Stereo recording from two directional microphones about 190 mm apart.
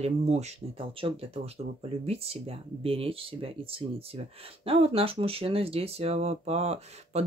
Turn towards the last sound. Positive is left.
turn(degrees=-35)  # may be behind; listen again after turning